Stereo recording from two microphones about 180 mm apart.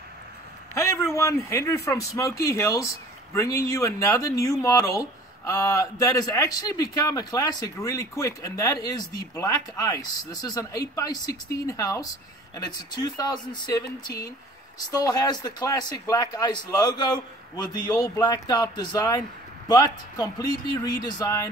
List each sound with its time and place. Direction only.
0.7 s speech: 15° left (ahead or behind)